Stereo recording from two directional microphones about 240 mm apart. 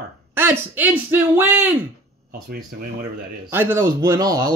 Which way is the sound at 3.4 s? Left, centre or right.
Centre.